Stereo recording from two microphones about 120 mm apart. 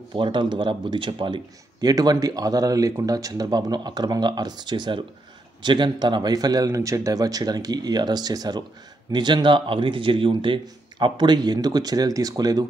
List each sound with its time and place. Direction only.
0.1 s speech: 45° right (ahead or behind)